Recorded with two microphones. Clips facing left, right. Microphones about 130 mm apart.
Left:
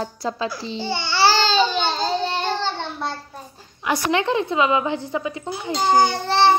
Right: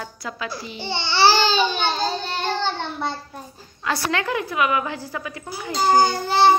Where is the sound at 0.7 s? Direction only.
20° right (ahead or behind).